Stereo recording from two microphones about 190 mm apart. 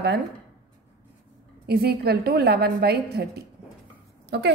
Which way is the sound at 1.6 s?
55° right (ahead or behind).